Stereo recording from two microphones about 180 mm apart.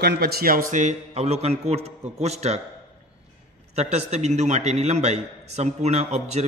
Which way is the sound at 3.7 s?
40° right (ahead or behind).